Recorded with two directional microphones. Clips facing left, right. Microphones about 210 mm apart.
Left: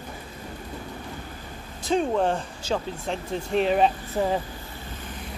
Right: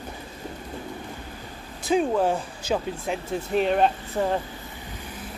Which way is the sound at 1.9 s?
5° right (ahead or behind).